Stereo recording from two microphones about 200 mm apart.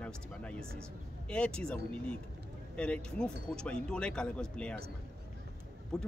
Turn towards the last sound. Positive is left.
turn(degrees=5)  # may be behind; listen again after turning